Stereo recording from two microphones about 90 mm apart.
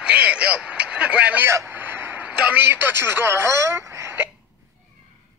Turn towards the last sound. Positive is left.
turn(degrees=-30)  # may be behind; listen again after turning